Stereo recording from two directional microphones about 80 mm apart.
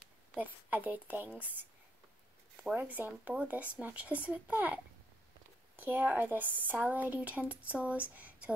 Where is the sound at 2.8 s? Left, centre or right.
Right.